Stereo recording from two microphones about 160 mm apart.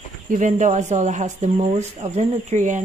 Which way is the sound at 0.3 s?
50° right (ahead or behind).